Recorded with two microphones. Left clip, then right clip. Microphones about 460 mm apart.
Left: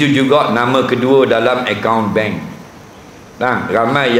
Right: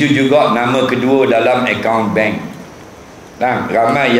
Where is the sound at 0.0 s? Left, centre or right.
Left.